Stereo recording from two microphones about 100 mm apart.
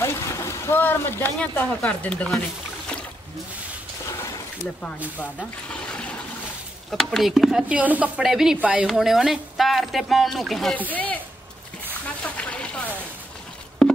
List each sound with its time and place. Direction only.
0.0 s splash: 30° left (ahead or behind)
1.4 s speech: 15° left (ahead or behind)
5.2 s speech: 10° left (ahead or behind)
7.6 s speech: 15° right (ahead or behind)
8.2 s speech: 5° right (ahead or behind)
8.8 s speech: centre (ahead or behind)
12.4 s a sound: 15° left (ahead or behind)